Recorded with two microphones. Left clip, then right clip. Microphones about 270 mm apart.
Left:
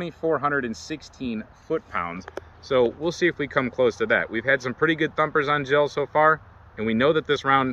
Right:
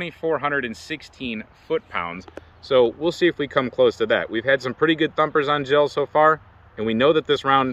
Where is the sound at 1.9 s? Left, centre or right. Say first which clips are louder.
Right 1 dB; centre.